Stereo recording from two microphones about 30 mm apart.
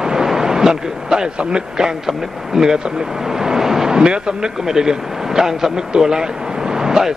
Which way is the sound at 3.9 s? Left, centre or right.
Right.